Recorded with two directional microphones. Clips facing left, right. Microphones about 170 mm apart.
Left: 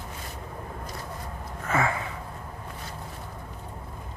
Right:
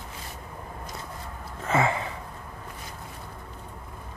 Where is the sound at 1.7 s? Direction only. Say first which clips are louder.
Right 2 dB; 25° right (ahead or behind).